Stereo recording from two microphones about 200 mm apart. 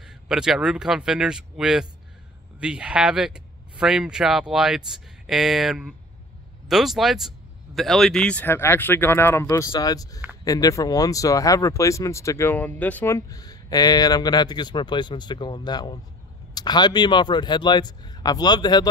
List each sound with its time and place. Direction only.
0.0 s speech: centre (ahead or behind); by 18.9 s 20° left (ahead or behind)